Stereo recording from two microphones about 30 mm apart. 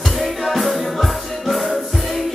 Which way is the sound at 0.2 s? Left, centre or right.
Centre.